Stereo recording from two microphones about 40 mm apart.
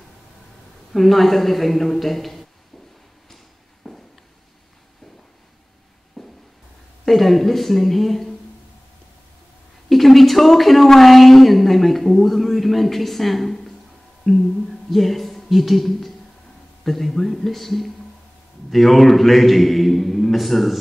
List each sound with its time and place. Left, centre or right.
0.9 s a woman's voice: centre
3.8 s walk: centre
6.2 s a sound: centre
7.1 s a woman's voice: centre
9.8 s a woman's voice: centre